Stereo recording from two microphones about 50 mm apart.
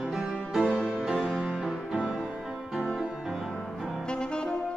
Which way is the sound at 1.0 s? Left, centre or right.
Centre.